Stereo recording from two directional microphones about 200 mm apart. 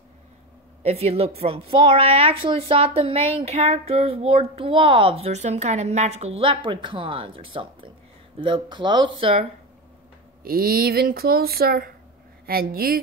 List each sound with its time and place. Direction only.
0.8 s child singing: 30° right (ahead or behind)
10.4 s speech: 50° right (ahead or behind)